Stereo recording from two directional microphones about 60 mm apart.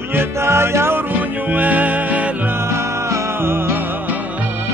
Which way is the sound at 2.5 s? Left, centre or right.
Right.